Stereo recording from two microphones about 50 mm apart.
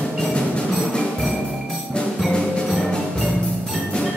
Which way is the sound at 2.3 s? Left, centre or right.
Centre.